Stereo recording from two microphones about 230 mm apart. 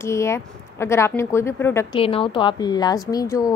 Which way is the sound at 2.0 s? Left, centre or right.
Left.